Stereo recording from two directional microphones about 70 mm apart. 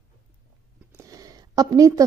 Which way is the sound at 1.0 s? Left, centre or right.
Right.